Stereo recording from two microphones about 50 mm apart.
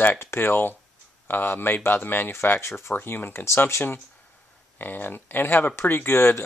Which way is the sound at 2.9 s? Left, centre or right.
Left.